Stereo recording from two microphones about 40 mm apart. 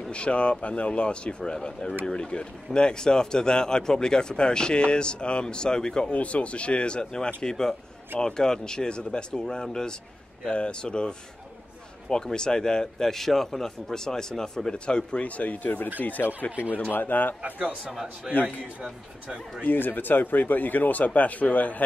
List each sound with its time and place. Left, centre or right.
0.1 s a man's voice: left
6.1 s a man's voice: left
7.4 s a man's voice: centre
15.2 s speech: left
17.5 s speech: right
18.3 s a man's voice: centre
18.8 s speech: right
19.6 s speech: left
21.0 s speech: left